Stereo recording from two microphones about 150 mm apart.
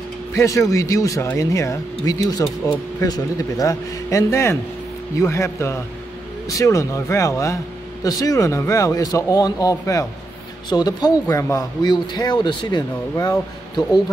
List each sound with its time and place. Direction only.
0.3 s speech: 20° left (ahead or behind)